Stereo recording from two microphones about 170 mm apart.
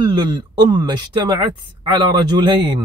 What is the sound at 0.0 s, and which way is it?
A man's voice, 25° right (ahead or behind).